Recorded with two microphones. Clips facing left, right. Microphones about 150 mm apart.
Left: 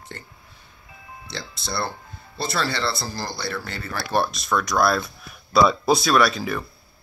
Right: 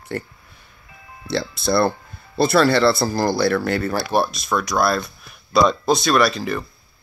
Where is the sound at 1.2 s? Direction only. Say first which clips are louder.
Right 12 dB; 60° right (ahead or behind).